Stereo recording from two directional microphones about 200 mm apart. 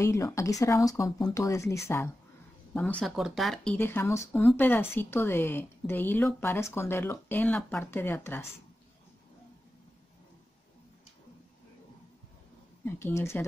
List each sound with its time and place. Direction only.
0.0 s speech: 15° left (ahead or behind)
12.8 s speech: 10° left (ahead or behind)